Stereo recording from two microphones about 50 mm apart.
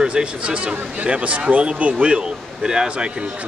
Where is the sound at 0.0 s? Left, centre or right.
Centre.